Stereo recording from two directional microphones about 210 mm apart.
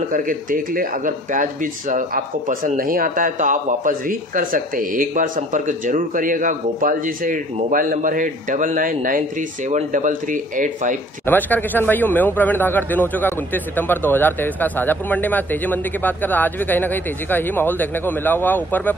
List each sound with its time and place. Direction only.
0.1 s speech: 40° right (ahead or behind)
11.2 s a man's voice: 10° left (ahead or behind)